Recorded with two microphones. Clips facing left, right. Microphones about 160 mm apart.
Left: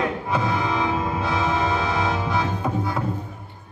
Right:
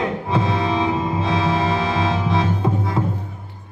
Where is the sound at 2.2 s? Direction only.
25° right (ahead or behind).